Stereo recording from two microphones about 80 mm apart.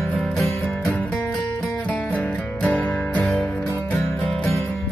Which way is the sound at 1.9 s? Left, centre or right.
Centre.